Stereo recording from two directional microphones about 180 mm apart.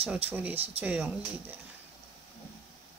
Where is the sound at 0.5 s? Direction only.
35° right (ahead or behind).